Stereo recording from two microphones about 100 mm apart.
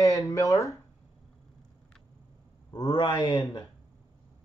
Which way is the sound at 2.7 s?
45° left (ahead or behind).